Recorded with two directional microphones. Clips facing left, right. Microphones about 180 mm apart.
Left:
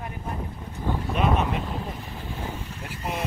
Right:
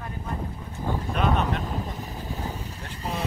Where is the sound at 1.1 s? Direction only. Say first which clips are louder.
Left 1 dB; centre (ahead or behind).